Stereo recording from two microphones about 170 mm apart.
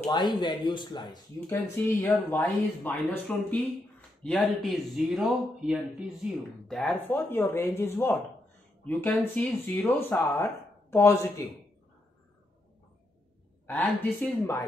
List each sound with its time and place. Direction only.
0.1 s speech: 25° left (ahead or behind)
1.5 s speech: 15° left (ahead or behind)
13.7 s speech: 5° left (ahead or behind)